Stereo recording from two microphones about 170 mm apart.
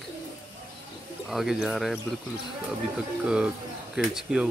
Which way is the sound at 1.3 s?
Centre (ahead or behind).